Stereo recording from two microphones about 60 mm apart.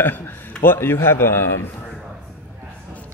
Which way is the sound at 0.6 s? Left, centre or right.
Left.